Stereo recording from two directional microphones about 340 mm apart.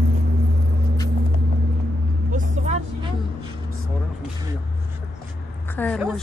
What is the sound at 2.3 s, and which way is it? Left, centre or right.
Vehicle, right.